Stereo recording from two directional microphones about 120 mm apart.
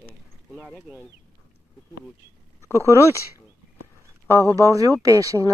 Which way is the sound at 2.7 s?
25° left (ahead or behind).